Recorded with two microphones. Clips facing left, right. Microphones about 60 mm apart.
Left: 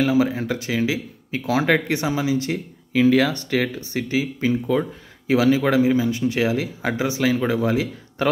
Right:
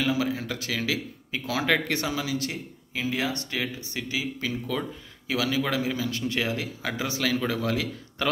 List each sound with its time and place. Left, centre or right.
0.1 s speech: left
2.9 s speech: left